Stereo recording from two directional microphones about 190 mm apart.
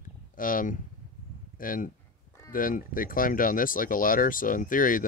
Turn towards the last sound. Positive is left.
turn(degrees=45)  # may be behind; listen again after turning